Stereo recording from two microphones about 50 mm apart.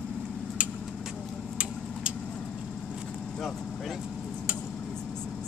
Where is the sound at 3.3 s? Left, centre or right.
Centre.